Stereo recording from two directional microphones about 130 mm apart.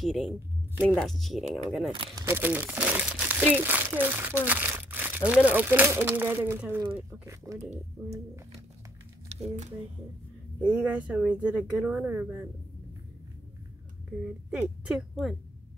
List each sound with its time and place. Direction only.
0.0 s speech: centre (ahead or behind)
2.1 s speech: 20° right (ahead or behind)
9.3 s speech: 55° right (ahead or behind)
10.6 s speech: 10° right (ahead or behind)
14.5 s a woman's voice: 10° right (ahead or behind)